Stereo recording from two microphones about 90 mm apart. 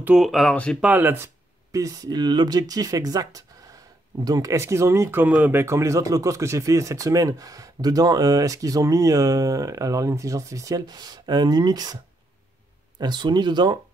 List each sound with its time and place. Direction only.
0.1 s speech: centre (ahead or behind)
0.7 s speech: 20° right (ahead or behind)
1.7 s speech: 40° right (ahead or behind)
5.2 s speech: 20° right (ahead or behind); by 12.0 s 45° right (ahead or behind)
13.0 s speech: 55° right (ahead or behind)